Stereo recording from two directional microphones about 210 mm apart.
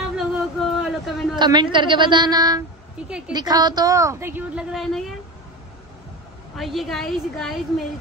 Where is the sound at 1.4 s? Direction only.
20° right (ahead or behind).